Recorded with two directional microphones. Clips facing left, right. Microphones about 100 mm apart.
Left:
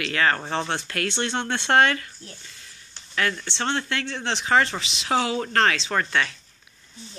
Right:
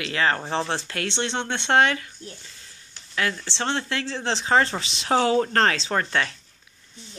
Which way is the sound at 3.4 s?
25° right (ahead or behind).